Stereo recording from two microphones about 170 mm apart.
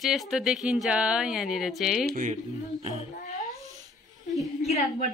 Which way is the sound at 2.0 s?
50° right (ahead or behind).